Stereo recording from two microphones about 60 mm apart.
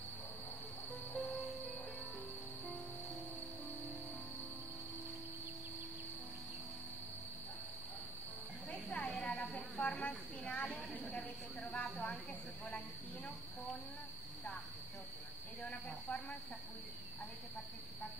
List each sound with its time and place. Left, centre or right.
8.7 s a sound: left
9.9 s snake: centre
15.6 s hiss: left